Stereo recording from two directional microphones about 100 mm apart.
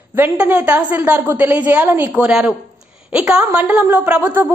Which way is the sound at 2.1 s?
10° right (ahead or behind).